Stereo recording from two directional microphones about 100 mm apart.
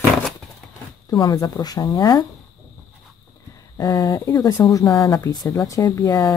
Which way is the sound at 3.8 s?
45° left (ahead or behind).